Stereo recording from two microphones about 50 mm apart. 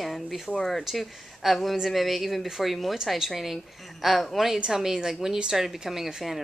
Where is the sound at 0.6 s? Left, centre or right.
Centre.